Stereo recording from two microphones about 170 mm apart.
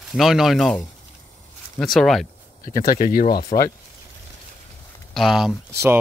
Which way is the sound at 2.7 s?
55° left (ahead or behind).